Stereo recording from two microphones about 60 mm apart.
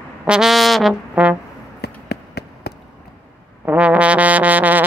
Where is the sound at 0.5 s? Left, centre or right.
Centre.